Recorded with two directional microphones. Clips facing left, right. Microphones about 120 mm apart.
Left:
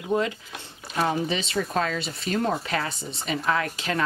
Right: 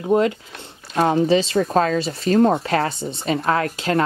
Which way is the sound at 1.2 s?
35° right (ahead or behind).